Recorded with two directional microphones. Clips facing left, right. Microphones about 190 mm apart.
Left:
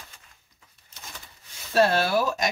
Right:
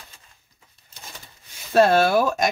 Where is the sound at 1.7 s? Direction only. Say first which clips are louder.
Right 5 dB; 55° right (ahead or behind).